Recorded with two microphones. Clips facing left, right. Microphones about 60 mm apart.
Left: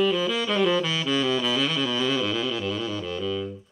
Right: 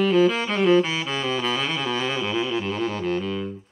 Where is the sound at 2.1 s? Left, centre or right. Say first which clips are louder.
Right 2 dB; right.